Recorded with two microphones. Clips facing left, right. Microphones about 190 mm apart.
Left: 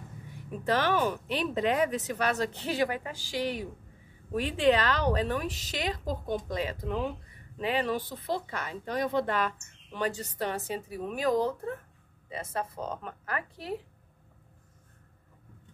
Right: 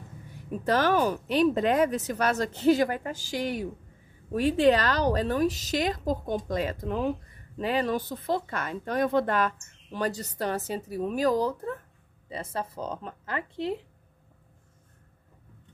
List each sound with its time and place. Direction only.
0.7 s a woman's voice: 40° right (ahead or behind); by 13.7 s 25° right (ahead or behind)